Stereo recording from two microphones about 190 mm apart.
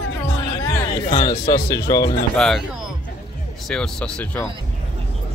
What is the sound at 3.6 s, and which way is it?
Speech, 5° left (ahead or behind).